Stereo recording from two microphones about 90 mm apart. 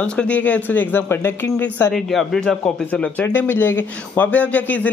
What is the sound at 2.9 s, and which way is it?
Speech, 20° left (ahead or behind).